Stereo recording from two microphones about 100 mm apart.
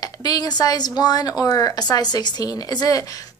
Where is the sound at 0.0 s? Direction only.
40° left (ahead or behind).